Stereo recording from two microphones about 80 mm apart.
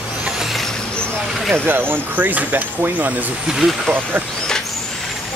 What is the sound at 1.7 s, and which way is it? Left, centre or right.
Speech, right.